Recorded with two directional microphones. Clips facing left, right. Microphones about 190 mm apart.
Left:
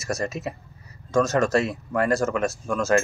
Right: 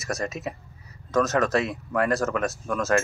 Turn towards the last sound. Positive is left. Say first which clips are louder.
# left 2 dB
turn(degrees=0)  # may be behind; listen again after turning